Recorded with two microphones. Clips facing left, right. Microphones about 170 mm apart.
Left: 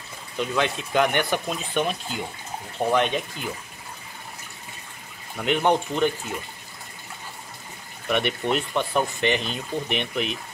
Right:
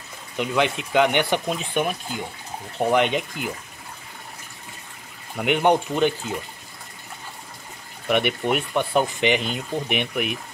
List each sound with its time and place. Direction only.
0.4 s speech: 15° right (ahead or behind)
5.4 s speech: 15° right (ahead or behind)
8.1 s speech: 15° right (ahead or behind)